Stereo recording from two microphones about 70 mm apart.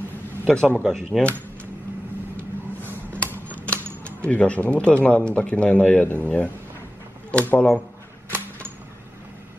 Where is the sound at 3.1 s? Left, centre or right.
Centre.